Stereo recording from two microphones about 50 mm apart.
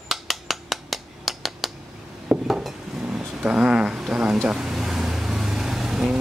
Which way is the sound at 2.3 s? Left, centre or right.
Right.